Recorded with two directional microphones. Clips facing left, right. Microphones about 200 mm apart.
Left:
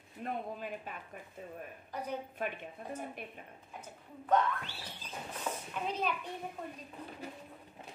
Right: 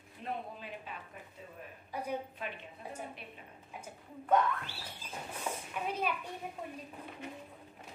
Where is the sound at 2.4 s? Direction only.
45° left (ahead or behind).